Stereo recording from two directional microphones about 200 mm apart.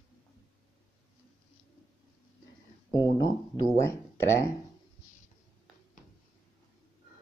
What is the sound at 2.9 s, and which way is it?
Speech, 20° left (ahead or behind).